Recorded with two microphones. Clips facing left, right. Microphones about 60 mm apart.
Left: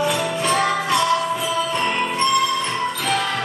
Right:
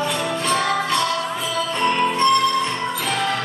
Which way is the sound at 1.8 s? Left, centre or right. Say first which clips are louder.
Right 7 dB; centre.